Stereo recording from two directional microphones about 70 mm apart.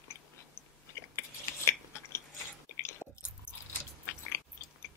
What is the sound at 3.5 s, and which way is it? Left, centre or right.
Chewing, centre.